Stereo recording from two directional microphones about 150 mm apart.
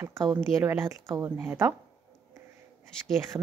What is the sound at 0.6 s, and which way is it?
A woman's voice, 20° right (ahead or behind).